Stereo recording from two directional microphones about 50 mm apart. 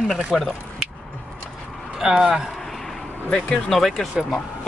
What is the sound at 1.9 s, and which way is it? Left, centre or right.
Speech, centre.